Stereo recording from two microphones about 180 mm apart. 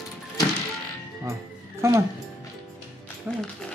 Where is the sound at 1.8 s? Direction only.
15° right (ahead or behind).